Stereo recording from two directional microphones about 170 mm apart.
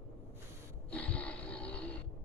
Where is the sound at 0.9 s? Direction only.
5° left (ahead or behind).